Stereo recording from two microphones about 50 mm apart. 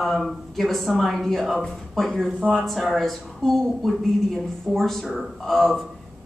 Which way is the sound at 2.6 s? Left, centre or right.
Centre.